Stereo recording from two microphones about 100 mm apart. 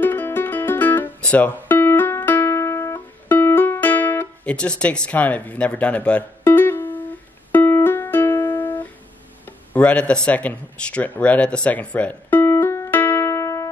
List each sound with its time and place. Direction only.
0.0 s music: 20° left (ahead or behind)
4.6 s speech: 10° left (ahead or behind)
7.5 s music: 20° left (ahead or behind)
9.7 s speech: 15° left (ahead or behind); by 13.7 s 30° left (ahead or behind)